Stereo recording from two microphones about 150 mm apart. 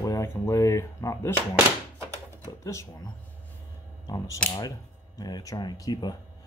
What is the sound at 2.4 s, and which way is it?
Speech, 20° left (ahead or behind).